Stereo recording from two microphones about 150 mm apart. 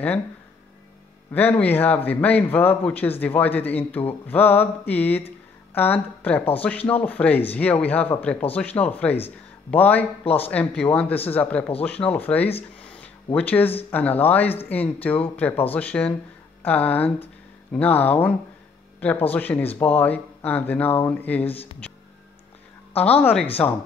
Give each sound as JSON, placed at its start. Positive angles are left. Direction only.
{"t": 1.3, "sound": "a man's voice", "side_deg": 10}
{"t": 10.2, "sound": "speech", "side_deg": 40}
{"t": 10.5, "sound": "a man's voice", "side_deg": 10}
{"t": 23.2, "sound": "a man's voice", "side_deg": 10}